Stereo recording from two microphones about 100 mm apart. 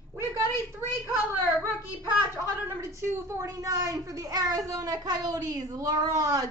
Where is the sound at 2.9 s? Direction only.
30° right (ahead or behind).